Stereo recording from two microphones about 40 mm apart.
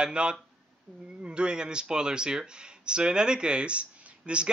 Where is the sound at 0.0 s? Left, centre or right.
Right.